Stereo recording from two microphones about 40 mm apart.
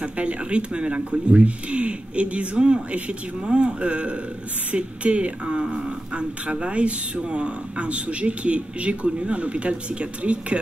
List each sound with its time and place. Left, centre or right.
0.0 s speech: right